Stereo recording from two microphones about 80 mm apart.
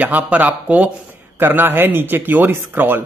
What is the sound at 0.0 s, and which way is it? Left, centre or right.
Speech, right.